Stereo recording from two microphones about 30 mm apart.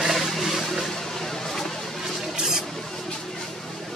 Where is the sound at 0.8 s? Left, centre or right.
Centre.